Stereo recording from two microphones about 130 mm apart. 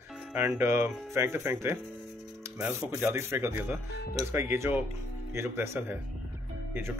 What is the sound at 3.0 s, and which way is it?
Speech, 15° right (ahead or behind).